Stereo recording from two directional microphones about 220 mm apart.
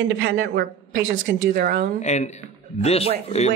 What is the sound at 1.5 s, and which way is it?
Speech, 45° right (ahead or behind).